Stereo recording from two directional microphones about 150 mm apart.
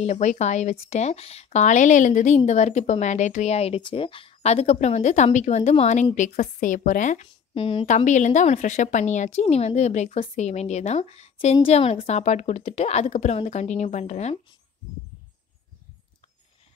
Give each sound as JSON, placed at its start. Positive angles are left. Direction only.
{"t": 0.0, "sound": "a woman's voice", "side_deg": 50}
{"t": 7.5, "sound": "speech", "side_deg": 35}
{"t": 7.8, "sound": "a woman's voice", "side_deg": 55}